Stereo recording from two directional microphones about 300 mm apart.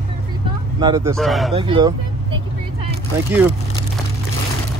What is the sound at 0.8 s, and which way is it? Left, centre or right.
Speech, centre.